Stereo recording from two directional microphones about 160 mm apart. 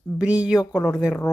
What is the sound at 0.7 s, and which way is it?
Speech, 10° left (ahead or behind).